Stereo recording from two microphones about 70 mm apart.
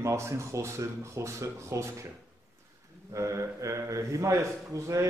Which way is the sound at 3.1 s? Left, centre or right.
Right.